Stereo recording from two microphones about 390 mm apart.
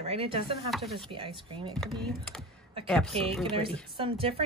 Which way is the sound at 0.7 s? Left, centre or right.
Centre.